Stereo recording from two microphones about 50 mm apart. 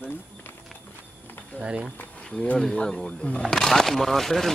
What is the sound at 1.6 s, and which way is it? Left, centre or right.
Speech, centre.